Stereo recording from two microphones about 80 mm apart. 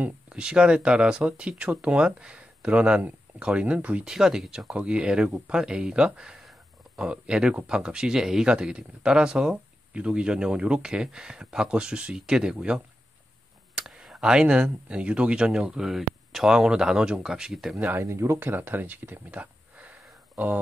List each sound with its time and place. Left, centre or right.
0.0 s speech: centre
4.1 s speech: centre
17.7 s speech: right
18.0 s speech: right
18.4 s speech: right
19.3 s a sound: centre